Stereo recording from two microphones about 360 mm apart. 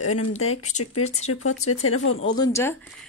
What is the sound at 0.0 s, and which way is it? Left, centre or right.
Speech, left.